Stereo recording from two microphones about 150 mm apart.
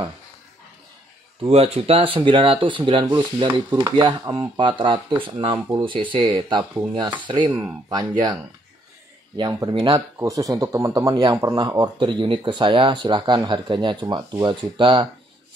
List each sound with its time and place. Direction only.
1.4 s speech: 40° right (ahead or behind); by 8.4 s 25° right (ahead or behind)
9.4 s speech: 25° right (ahead or behind)